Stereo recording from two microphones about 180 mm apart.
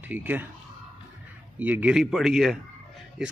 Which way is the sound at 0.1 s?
10° right (ahead or behind).